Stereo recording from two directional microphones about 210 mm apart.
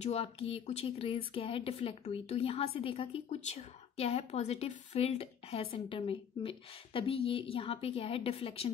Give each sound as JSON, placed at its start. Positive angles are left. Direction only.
{"t": 0.0, "sound": "speech", "side_deg": 30}